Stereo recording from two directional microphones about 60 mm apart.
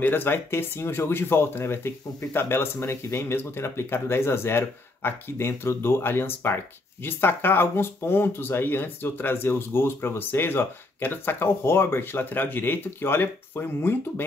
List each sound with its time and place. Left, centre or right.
0.0 s speech: left